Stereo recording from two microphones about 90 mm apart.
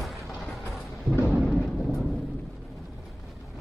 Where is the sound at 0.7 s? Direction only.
Centre (ahead or behind).